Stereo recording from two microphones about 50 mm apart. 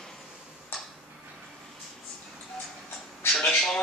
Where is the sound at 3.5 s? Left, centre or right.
Centre.